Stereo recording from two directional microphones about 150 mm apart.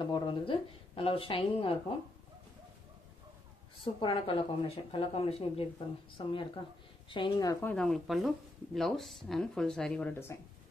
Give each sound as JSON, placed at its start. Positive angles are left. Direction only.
{"t": 0.0, "sound": "speech", "side_deg": 30}
{"t": 3.8, "sound": "speech", "side_deg": 35}
{"t": 7.6, "sound": "speech", "side_deg": 5}
{"t": 10.3, "sound": "speech", "side_deg": 20}